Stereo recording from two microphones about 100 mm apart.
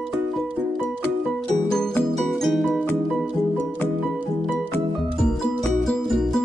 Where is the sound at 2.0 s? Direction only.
5° left (ahead or behind).